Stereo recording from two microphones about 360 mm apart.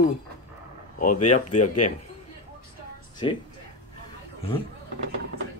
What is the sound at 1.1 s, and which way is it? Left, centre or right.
Speech, left.